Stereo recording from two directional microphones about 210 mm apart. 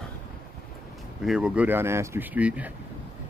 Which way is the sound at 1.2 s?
5° right (ahead or behind).